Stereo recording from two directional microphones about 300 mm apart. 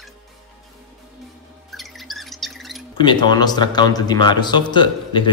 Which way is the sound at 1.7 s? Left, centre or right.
Centre.